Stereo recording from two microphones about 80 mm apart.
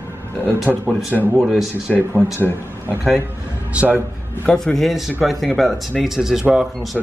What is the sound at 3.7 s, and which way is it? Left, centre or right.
Speech, right.